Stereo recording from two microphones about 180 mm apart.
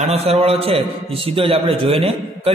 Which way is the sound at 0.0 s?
35° right (ahead or behind).